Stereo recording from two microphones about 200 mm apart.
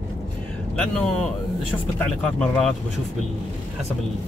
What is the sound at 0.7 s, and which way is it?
Speech, 5° left (ahead or behind).